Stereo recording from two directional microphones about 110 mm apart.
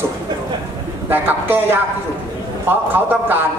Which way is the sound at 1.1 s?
20° right (ahead or behind).